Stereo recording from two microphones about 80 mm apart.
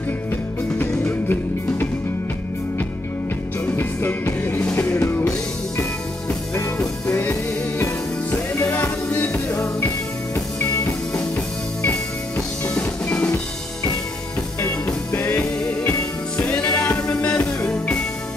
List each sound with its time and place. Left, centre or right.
0.7 s music: left
3.7 s music: left
8.5 s music: left
9.6 s music: left
12.6 s music: centre
16.3 s music: centre